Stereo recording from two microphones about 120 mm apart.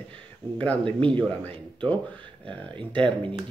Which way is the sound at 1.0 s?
10° left (ahead or behind).